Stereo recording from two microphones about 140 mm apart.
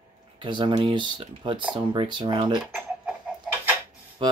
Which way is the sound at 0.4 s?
35° right (ahead or behind).